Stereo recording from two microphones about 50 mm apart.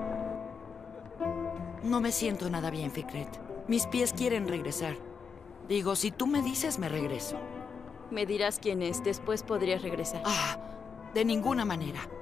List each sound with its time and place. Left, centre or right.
0.0 s music: centre
1.2 s speech: centre